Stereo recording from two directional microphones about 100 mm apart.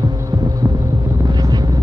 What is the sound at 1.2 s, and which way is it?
Vehicle, 45° right (ahead or behind).